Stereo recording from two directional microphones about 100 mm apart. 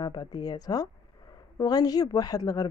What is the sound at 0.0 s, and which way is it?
A woman's voice, 45° left (ahead or behind).